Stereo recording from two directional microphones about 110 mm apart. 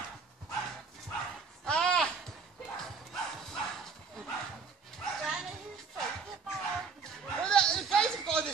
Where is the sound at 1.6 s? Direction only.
5° left (ahead or behind).